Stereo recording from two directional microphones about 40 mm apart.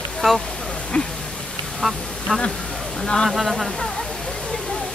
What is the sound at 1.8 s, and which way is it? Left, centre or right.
Speech, centre.